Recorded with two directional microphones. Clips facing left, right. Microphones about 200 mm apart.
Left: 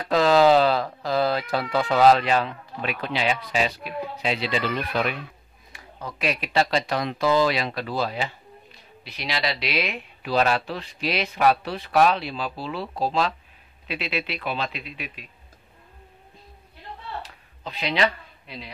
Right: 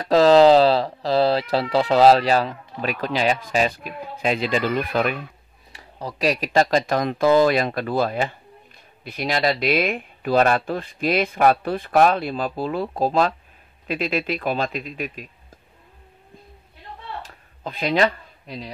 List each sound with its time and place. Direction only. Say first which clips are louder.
0.1 s speech: right 5 dB; 35° right (ahead or behind)
5.7 s speech: right 4 dB; 35° right (ahead or behind)
17.2 s a sound: right 4 dB; 50° right (ahead or behind)